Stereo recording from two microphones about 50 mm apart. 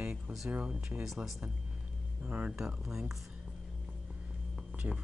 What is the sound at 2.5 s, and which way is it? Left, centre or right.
Speech, centre.